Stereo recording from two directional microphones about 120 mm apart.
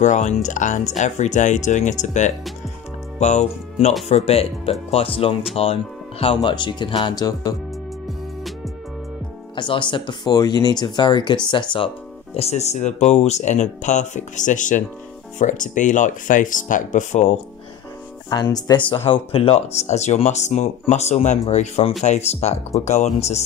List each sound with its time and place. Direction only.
0.0 s speech: 80° left
3.2 s speech: 70° left (ahead or behind)
4.1 s speech: 55° left (ahead or behind); by 7.5 s 35° left (ahead or behind)
9.6 s speech: 40° left (ahead or behind)
12.4 s speech: 65° left (ahead or behind)
18.3 s speech: 35° left (ahead or behind)
18.9 s speech: 50° left (ahead or behind); by 23.4 s 65° left (ahead or behind)